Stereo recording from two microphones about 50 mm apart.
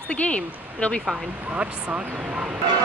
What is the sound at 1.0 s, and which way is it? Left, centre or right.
Speech, right.